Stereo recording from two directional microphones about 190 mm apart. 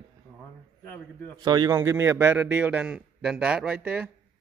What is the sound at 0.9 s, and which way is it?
Speech, 10° left (ahead or behind).